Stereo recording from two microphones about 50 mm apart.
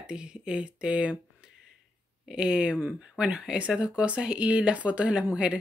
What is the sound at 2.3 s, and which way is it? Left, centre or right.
Speech, centre.